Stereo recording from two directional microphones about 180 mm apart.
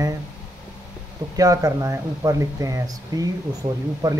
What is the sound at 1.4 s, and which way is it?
Speech, 20° right (ahead or behind).